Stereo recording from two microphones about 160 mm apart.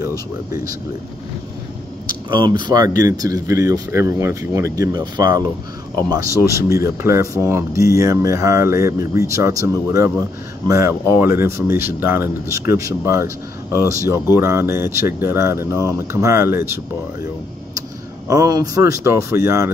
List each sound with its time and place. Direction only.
2.6 s speech: 25° right (ahead or behind)
6.4 s speech: 20° right (ahead or behind)
18.3 s speech: 25° right (ahead or behind)